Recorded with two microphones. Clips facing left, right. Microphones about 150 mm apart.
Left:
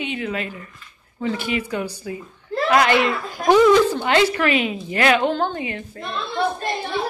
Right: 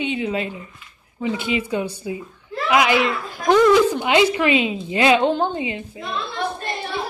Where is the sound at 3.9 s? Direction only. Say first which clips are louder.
Right 1 dB; 15° right (ahead or behind).